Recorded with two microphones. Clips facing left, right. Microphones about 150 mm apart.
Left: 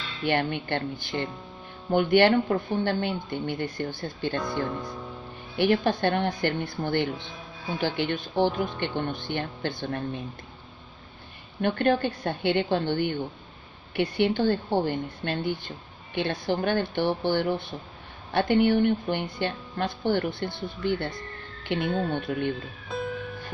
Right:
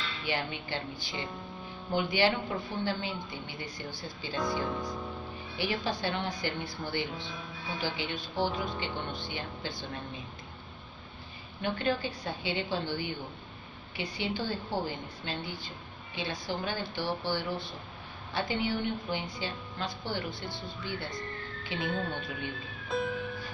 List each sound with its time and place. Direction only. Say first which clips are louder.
0.2 s a woman's voice: left 10 dB; 60° left (ahead or behind)
2.3 s a woman's voice: left 10 dB; 50° left (ahead or behind)
4.4 s music: right 2 dB; centre (ahead or behind)
5.6 s a woman's voice: left 10 dB; 55° left (ahead or behind)
11.6 s a woman's voice: left 8 dB; 60° left (ahead or behind)
22.3 s speech: left 10 dB; 50° left (ahead or behind)
22.8 s music: even; centre (ahead or behind)